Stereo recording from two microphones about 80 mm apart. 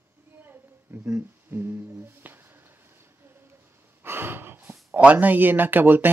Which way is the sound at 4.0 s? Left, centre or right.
Right.